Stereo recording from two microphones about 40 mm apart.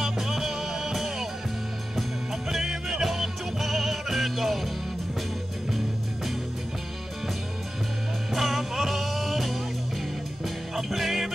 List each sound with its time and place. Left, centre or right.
0.0 s music: centre
2.5 s music: centre
8.3 s music: centre